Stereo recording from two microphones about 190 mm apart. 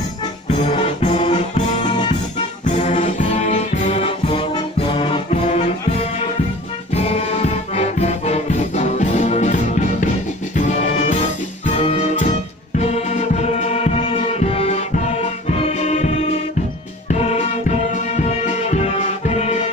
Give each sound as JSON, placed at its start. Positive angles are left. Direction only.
{"t": 0.5, "sound": "music", "side_deg": 30}
{"t": 6.9, "sound": "music", "side_deg": 35}
{"t": 17.1, "sound": "music", "side_deg": 35}